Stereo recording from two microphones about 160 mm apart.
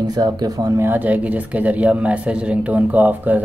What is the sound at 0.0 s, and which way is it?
Speech, 25° right (ahead or behind).